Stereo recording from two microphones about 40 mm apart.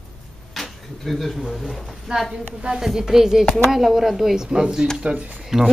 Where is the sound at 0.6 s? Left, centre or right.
Centre.